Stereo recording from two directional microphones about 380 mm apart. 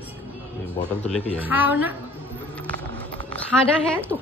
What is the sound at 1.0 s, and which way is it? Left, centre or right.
Speech, centre.